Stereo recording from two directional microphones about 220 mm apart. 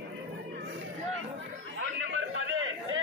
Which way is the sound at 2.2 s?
60° right (ahead or behind).